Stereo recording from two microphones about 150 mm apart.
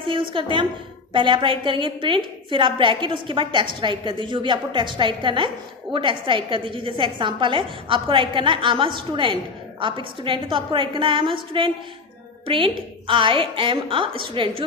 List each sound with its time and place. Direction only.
0.3 s a woman's voice: 35° right (ahead or behind)